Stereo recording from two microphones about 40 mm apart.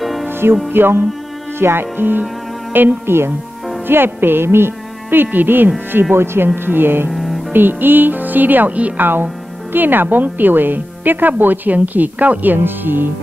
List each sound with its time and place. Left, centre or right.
0.0 s music: centre
0.3 s music: right
0.7 s speech: right
1.6 s speech: right
6.1 s speech: right
7.1 s music: centre
7.5 s speech: right
8.7 s a woman's voice: right
9.7 s speech: right